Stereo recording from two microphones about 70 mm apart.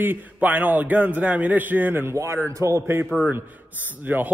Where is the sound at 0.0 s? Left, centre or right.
Right.